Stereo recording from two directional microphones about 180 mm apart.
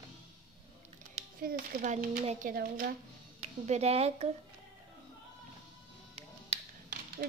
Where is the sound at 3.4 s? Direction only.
35° right (ahead or behind).